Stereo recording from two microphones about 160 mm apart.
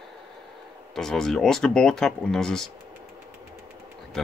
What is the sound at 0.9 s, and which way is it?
Speech, centre (ahead or behind).